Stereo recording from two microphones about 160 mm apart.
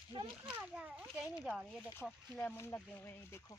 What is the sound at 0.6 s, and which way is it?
A child's voice, 5° right (ahead or behind).